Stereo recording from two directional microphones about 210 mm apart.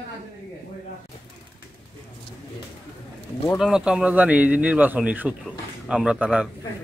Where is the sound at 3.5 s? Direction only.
5° right (ahead or behind).